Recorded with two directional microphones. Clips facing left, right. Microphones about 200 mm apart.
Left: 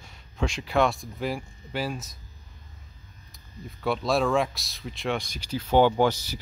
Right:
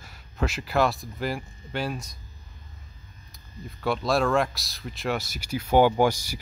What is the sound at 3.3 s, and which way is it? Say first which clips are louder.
Speech: right 1 dB; centre (ahead or behind).